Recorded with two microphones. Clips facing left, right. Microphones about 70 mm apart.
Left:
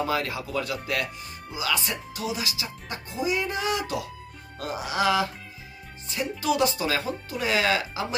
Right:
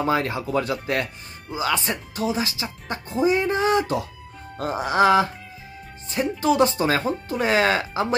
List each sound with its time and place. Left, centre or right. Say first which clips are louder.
0.0 s speech: right 5 dB; right